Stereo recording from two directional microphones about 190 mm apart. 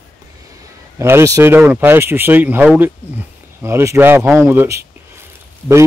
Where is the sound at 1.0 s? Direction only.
15° right (ahead or behind).